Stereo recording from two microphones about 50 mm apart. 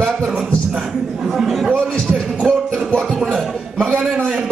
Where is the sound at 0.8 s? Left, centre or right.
Centre.